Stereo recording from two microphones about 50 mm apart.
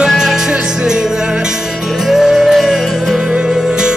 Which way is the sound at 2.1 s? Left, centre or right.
Centre.